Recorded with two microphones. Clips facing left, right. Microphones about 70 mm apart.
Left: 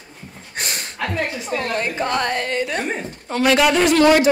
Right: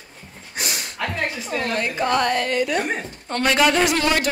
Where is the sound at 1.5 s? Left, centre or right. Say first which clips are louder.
Left 1 dB; left.